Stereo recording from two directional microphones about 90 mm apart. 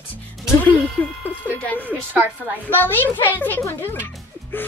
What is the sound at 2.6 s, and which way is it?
Speech, 20° left (ahead or behind).